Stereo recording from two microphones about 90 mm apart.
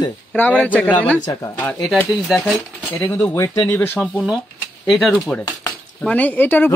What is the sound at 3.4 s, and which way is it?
Speech, 35° left (ahead or behind).